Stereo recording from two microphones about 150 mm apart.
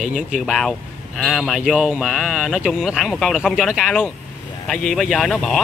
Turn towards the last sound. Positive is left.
turn(degrees=5)  # may be behind; listen again after turning